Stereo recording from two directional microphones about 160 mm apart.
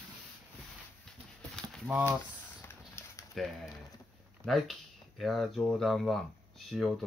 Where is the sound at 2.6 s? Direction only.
15° left (ahead or behind).